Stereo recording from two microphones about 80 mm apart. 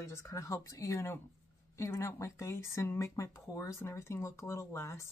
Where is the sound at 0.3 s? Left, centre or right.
Left.